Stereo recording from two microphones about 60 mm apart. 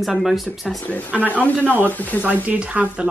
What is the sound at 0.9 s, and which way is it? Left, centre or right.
Speech, left.